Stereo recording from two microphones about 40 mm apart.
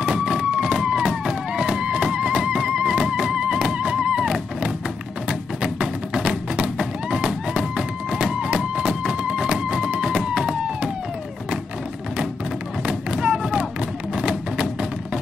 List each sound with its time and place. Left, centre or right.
0.0 s a sound: centre
0.8 s music: centre
5.3 s music: centre
10.0 s a sound: centre
12.8 s thump: centre
14.1 s music: right